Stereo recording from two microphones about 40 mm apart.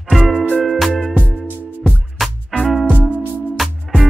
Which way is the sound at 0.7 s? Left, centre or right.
Centre.